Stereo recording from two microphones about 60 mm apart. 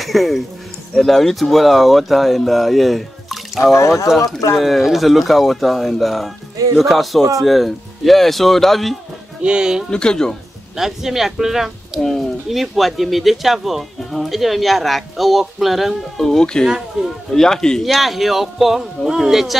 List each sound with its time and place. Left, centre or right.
0.0 s a sound: centre
0.9 s speech: centre
3.7 s speech: left
4.6 s speech: centre
9.4 s speech: centre
9.8 s a man's voice: centre
10.8 s speech: centre
12.0 s speech: centre
16.3 s a man's voice: centre
17.8 s speech: centre